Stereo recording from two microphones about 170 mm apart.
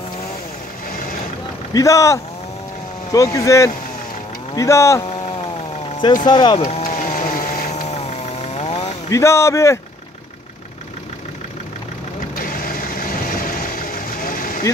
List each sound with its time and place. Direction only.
1.7 s speech: 20° left (ahead or behind)
6.2 s speech: 25° left (ahead or behind)
6.8 s vehicle: 45° left (ahead or behind)
9.1 s speech: 15° left (ahead or behind)
12.4 s vehicle: 55° left (ahead or behind)